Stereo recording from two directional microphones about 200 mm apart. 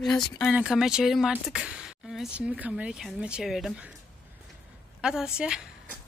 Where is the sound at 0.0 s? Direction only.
Centre (ahead or behind).